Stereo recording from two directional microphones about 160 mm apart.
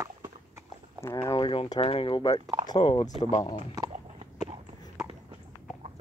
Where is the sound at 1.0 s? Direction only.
20° left (ahead or behind).